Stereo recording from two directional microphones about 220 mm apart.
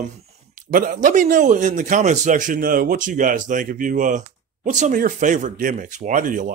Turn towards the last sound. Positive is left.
turn(degrees=-35)  # may be behind; listen again after turning